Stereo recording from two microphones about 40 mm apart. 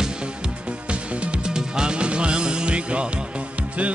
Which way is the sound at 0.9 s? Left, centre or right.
Right.